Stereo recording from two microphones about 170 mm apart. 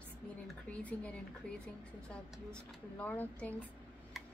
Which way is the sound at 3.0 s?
10° left (ahead or behind).